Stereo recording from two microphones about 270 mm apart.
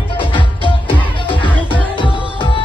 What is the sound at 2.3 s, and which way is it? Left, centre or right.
Music, centre.